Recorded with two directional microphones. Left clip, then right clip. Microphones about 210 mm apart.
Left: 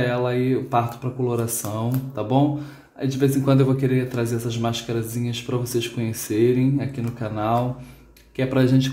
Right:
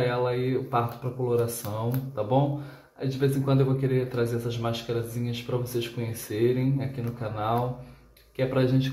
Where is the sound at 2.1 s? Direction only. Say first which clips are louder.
Left 4 dB; 35° left (ahead or behind).